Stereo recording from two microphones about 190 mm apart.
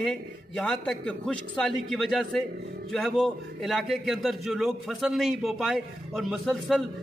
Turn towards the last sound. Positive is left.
turn(degrees=0)  # may be behind; listen again after turning